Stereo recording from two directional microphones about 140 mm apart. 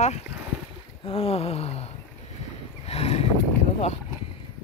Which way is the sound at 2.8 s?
50° left (ahead or behind).